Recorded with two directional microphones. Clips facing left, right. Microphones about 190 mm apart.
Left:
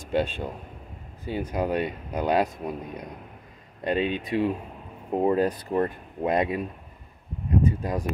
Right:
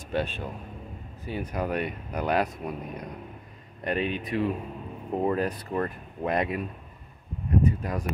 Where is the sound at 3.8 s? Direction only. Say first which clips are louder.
Left 3 dB; 25° left (ahead or behind).